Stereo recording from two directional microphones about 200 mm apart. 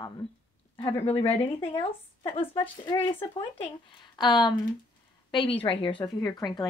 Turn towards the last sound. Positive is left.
turn(degrees=20)  # may be behind; listen again after turning